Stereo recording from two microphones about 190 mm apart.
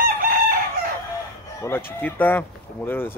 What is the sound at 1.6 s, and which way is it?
Speech, 10° left (ahead or behind).